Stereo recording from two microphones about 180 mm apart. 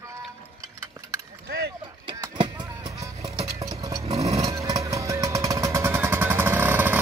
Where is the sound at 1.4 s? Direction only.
65° right (ahead or behind).